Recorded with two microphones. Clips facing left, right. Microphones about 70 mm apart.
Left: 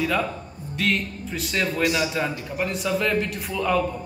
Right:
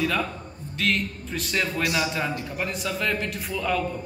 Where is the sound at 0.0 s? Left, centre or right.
Centre.